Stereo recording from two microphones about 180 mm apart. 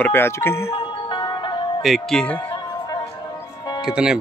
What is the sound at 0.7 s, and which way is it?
Music, 30° left (ahead or behind).